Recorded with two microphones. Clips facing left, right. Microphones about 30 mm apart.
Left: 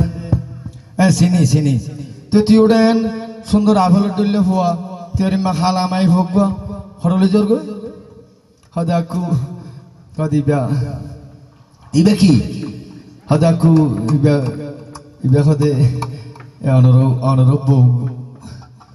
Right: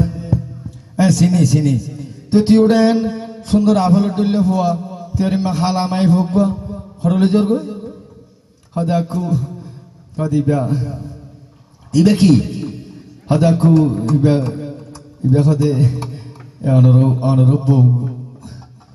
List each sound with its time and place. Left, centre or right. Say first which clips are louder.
0.0 s music: right 1 dB; centre
2.9 s a man's voice: left 1 dB; centre